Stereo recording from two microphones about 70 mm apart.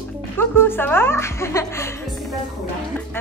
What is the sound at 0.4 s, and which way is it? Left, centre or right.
Speech, left.